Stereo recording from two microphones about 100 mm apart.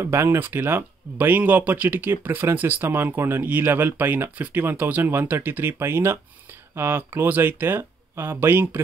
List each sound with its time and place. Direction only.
0.0 s speech: 25° right (ahead or behind)